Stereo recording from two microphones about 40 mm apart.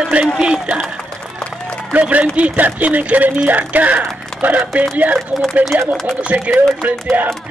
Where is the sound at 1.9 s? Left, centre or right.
Right.